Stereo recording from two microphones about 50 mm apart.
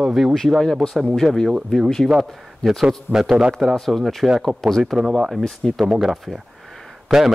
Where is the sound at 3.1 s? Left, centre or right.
Left.